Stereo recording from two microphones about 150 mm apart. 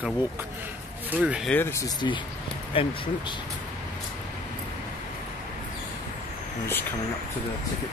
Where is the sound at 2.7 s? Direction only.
35° left (ahead or behind).